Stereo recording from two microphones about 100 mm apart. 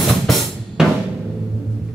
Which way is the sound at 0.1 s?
Centre (ahead or behind).